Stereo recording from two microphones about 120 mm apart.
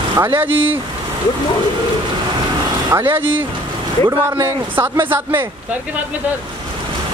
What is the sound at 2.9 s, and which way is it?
Speech, 25° right (ahead or behind).